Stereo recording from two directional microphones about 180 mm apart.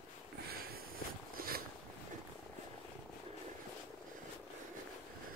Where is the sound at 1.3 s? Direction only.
55° right (ahead or behind).